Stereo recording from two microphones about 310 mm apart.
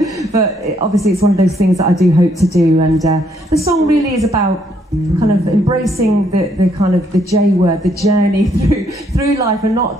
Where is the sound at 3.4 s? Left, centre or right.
Centre.